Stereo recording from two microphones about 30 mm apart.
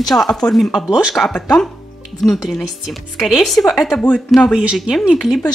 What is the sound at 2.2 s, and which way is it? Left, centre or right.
Speech, centre.